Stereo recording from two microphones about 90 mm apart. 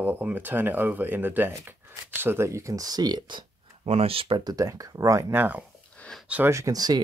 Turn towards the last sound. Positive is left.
turn(degrees=-45)  # may be behind; listen again after turning